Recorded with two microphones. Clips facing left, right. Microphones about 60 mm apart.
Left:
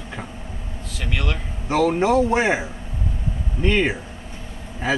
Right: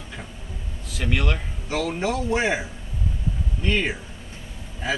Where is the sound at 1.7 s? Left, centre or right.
Left.